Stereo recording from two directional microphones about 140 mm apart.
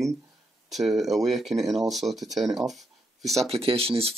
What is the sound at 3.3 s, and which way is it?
Speech, 45° right (ahead or behind).